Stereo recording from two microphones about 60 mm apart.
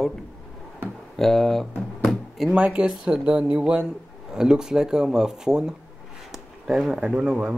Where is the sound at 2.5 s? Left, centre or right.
Right.